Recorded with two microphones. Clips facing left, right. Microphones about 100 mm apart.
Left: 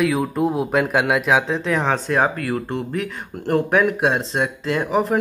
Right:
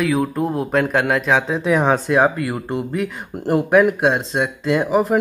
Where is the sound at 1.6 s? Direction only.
10° right (ahead or behind).